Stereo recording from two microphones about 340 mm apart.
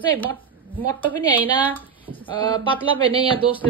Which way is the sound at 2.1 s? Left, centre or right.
Centre.